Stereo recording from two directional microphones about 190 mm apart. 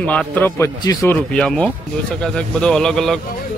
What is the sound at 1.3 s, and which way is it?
Speech, 5° left (ahead or behind).